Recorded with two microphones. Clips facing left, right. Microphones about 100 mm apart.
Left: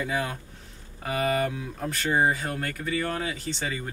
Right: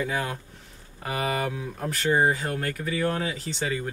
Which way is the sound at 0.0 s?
Centre (ahead or behind).